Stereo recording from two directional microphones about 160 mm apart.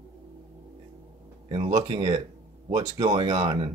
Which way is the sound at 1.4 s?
35° right (ahead or behind).